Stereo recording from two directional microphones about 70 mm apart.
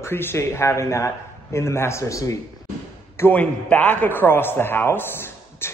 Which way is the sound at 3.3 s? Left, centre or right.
Left.